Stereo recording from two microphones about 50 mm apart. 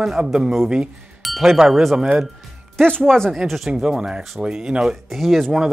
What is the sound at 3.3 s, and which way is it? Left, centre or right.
Speech, centre.